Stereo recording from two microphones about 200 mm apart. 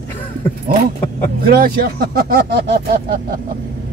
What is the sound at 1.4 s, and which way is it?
Speech, 50° right (ahead or behind).